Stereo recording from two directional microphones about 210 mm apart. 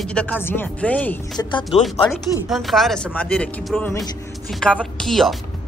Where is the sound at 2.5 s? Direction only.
Centre (ahead or behind).